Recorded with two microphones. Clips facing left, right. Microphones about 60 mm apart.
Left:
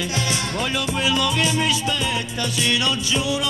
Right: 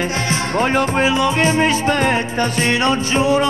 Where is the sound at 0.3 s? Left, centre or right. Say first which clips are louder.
Right 7 dB; right.